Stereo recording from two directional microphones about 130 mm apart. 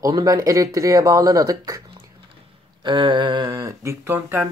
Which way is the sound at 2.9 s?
35° right (ahead or behind).